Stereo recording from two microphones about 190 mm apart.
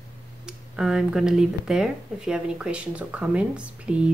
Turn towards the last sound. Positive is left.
turn(degrees=-5)  # may be behind; listen again after turning